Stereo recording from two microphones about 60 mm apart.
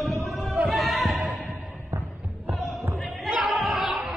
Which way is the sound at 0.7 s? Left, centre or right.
Centre.